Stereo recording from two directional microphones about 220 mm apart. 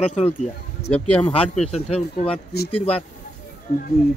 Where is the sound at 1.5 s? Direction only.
30° left (ahead or behind).